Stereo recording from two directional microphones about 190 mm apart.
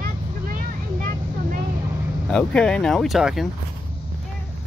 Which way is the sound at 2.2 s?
5° left (ahead or behind).